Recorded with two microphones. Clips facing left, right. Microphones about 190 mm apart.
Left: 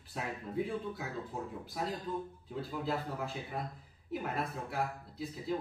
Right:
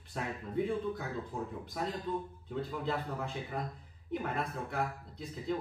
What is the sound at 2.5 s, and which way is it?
Speech, 5° left (ahead or behind).